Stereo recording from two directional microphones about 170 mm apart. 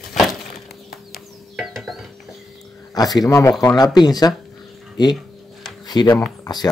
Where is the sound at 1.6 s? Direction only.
Centre (ahead or behind).